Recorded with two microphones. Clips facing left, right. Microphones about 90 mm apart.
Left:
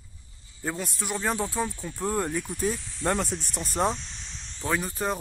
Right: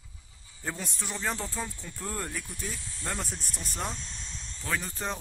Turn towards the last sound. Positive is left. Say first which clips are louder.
# left 5 dB
turn(degrees=10)  # may be behind; listen again after turning